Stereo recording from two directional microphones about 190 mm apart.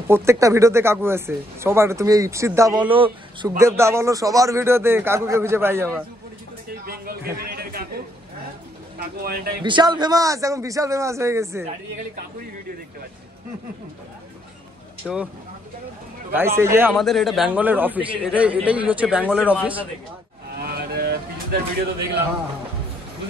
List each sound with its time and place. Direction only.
0.1 s speech: 15° right (ahead or behind)
3.5 s speech: 15° right (ahead or behind)
6.9 s a sound: 50° right (ahead or behind)
9.0 s speech: 50° right (ahead or behind)
9.6 s speech: 25° right (ahead or behind)
15.0 s speech: centre (ahead or behind)
16.3 s speech: 15° right (ahead or behind)
16.9 s speech: centre (ahead or behind)
20.5 s a sound: 55° right (ahead or behind)